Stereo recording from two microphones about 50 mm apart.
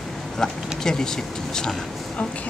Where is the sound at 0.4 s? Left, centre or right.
Centre.